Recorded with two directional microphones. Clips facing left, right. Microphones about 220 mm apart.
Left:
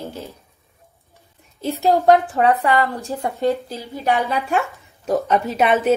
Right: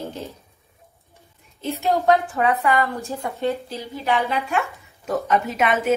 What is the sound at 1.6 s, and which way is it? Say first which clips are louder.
A woman's voice: left 4 dB; 35° left (ahead or behind).